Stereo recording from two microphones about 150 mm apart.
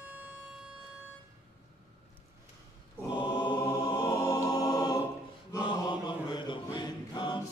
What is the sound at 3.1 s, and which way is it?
Choir, 30° left (ahead or behind).